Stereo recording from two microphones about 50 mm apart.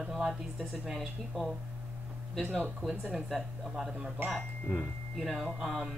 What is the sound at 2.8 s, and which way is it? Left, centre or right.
A woman's voice, centre.